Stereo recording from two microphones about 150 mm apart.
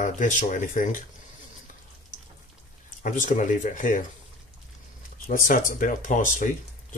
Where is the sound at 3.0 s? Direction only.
60° left (ahead or behind).